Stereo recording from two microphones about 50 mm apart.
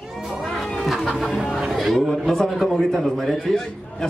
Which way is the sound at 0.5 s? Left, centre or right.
Centre.